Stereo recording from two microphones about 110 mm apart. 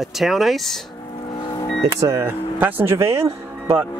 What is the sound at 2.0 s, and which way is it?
Speech, 25° right (ahead or behind).